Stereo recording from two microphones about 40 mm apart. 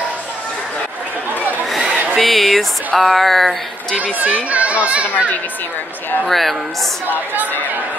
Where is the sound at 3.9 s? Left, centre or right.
Right.